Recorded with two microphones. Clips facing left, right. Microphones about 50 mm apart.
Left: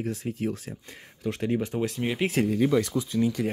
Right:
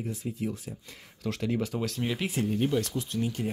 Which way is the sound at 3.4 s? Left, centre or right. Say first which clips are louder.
Left 4 dB; left.